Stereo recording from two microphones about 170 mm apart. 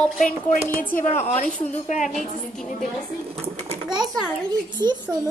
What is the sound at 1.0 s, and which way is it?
Speech, 45° left (ahead or behind).